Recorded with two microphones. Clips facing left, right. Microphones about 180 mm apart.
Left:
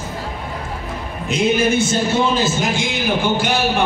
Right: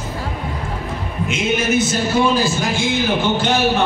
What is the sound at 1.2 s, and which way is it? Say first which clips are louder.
A man's voice: left 3 dB; 30° left (ahead or behind).